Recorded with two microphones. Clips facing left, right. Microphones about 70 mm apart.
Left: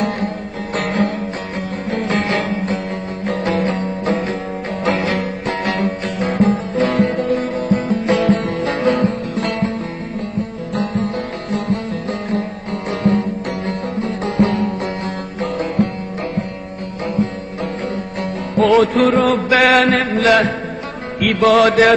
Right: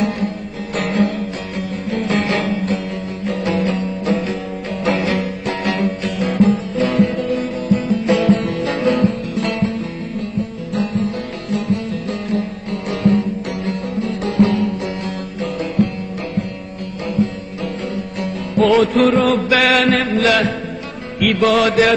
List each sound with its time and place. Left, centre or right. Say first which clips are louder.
0.7 s music: right 1 dB; left
11.5 s music: right 1 dB; left
13.7 s music: right 1 dB; left
18.6 s chant: even; left
21.2 s music: left 2 dB; left